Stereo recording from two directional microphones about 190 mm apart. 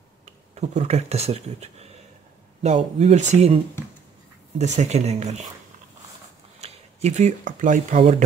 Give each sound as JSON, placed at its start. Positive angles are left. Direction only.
{"t": 0.2, "sound": "speech", "side_deg": -35}
{"t": 6.6, "sound": "speech", "side_deg": -35}